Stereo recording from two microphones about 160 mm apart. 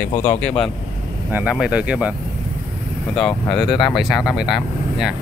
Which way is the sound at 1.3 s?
5° right (ahead or behind).